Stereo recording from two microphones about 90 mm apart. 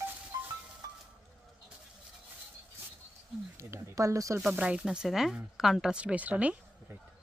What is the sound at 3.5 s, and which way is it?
Speech, 35° right (ahead or behind).